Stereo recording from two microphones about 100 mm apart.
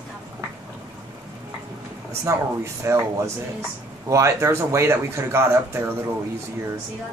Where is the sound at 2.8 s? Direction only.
30° right (ahead or behind).